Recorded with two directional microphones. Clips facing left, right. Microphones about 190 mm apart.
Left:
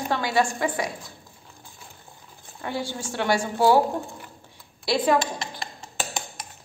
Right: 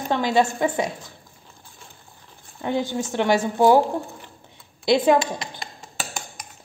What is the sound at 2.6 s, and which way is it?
Speech, 20° right (ahead or behind).